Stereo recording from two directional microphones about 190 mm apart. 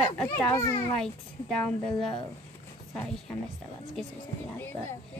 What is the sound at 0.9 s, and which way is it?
Speech, 5° left (ahead or behind).